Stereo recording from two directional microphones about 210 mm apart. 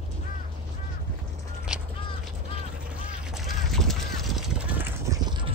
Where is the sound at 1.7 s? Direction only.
5° right (ahead or behind).